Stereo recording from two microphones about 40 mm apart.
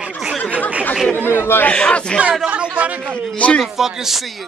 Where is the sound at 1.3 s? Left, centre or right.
Left.